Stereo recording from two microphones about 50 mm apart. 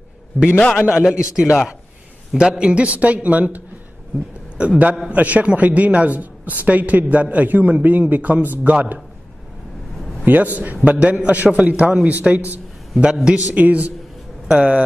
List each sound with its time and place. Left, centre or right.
0.9 s a man's voice: centre; by 8.7 s right
10.2 s a man's voice: right
13.0 s a man's voice: centre
14.5 s a man's voice: centre